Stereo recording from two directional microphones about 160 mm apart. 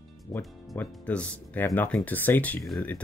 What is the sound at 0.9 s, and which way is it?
Speech, 5° left (ahead or behind).